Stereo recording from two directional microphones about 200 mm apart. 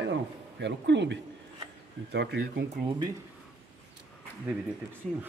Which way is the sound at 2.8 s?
25° right (ahead or behind).